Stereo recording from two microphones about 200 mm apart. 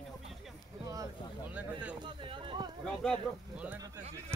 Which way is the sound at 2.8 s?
5° left (ahead or behind).